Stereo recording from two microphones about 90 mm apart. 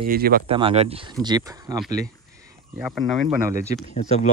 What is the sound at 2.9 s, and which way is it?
Speech, 5° right (ahead or behind).